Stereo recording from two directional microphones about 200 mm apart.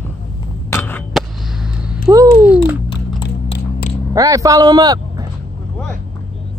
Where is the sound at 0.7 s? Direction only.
5° left (ahead or behind).